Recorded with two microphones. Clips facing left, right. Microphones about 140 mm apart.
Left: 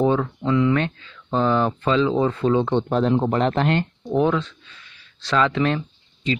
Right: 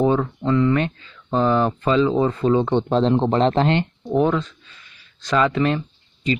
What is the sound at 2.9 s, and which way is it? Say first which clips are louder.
Speech: right 2 dB; 25° right (ahead or behind).